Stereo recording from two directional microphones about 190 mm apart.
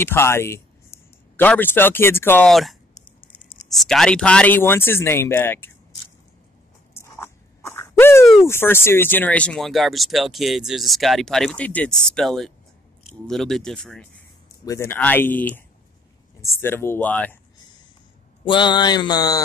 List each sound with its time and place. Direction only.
0.0 s speech: 10° left (ahead or behind)
7.0 s a sound: 15° left (ahead or behind)
8.5 s speech: 10° left (ahead or behind)
14.6 s speech: 15° left (ahead or behind)
18.4 s mantra: 25° left (ahead or behind)